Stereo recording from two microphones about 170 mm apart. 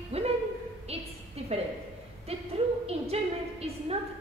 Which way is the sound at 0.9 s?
35° right (ahead or behind).